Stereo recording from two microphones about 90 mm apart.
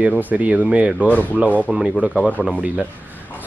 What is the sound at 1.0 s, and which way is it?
Speech, 15° left (ahead or behind).